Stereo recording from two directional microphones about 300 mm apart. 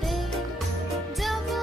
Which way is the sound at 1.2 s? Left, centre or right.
Centre.